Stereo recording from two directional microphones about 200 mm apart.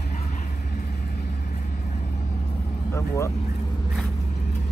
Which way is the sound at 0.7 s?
50° left (ahead or behind).